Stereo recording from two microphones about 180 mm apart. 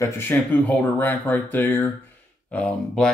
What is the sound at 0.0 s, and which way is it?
Speech, 15° left (ahead or behind).